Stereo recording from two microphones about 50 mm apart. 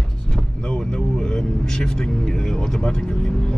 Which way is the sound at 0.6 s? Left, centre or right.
Centre.